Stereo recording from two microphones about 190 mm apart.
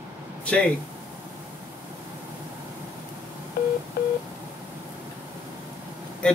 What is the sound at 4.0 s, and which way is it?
Speech, 55° left (ahead or behind).